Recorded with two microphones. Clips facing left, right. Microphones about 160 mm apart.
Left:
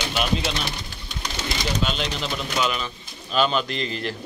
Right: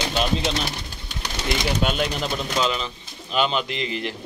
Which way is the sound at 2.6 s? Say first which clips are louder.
Right 1 dB; 25° right (ahead or behind).